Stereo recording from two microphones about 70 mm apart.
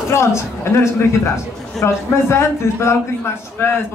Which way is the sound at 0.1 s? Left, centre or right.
Left.